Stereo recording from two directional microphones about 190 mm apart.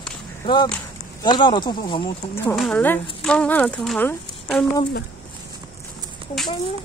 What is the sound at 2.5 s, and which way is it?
Speech, centre (ahead or behind).